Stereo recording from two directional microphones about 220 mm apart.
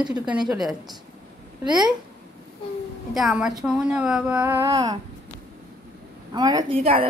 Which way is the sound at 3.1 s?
Centre (ahead or behind).